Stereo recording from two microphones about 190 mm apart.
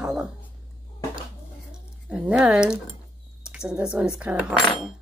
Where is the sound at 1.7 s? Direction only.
5° right (ahead or behind).